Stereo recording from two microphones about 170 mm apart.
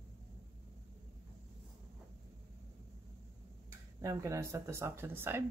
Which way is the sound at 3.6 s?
20° right (ahead or behind).